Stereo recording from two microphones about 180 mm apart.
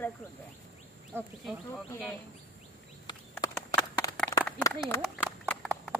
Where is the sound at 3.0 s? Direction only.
20° left (ahead or behind).